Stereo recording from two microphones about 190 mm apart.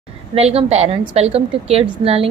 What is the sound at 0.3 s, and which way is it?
A woman's voice, 30° right (ahead or behind).